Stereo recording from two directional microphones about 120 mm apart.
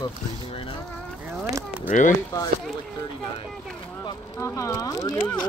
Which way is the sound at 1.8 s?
90° left.